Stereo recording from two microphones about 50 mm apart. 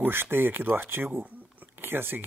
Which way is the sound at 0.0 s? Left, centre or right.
Right.